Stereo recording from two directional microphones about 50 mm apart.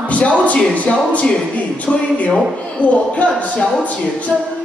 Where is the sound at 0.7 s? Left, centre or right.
Left.